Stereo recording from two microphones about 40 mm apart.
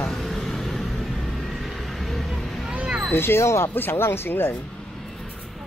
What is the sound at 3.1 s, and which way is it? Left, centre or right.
Speech, left.